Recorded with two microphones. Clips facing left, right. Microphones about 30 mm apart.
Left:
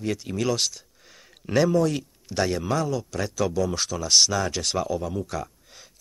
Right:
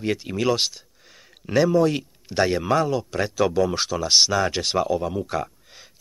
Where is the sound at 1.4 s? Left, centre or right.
Centre.